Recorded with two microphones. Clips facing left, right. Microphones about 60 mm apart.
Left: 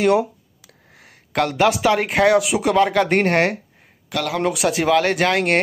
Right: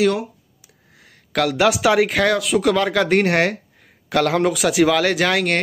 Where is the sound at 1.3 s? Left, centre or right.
Centre.